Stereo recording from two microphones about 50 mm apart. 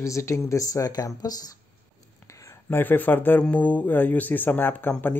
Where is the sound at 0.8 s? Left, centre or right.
Left.